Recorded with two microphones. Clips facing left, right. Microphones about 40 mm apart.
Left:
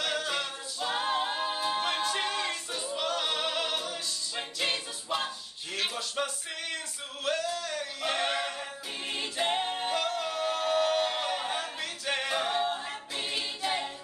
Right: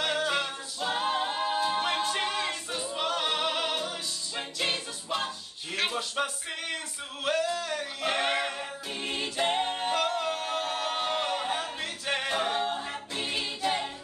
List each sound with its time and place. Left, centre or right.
0.0 s a capella: centre
4.4 s music: centre
5.9 s music: centre
7.2 s a sound: right
7.7 s music: centre
9.0 s a capella: centre
13.6 s singing: centre